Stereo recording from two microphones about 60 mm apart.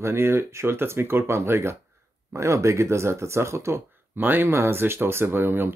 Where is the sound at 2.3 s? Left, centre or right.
Right.